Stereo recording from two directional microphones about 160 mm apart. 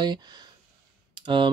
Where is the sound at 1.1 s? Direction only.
30° right (ahead or behind).